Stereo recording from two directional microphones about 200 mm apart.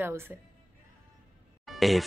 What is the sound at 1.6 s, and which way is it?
Music, centre (ahead or behind).